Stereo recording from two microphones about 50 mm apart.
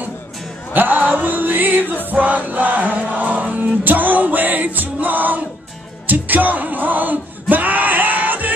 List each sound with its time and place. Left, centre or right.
0.7 s music: right